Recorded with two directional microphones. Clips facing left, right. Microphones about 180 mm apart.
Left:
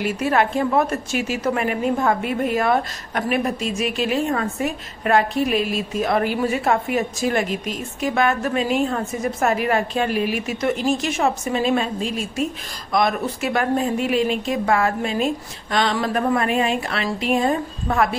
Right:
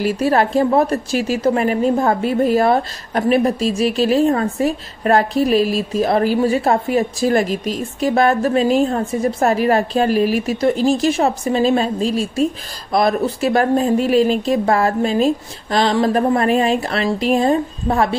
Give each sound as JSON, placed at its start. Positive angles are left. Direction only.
{"t": 0.0, "sound": "a woman's voice", "side_deg": -35}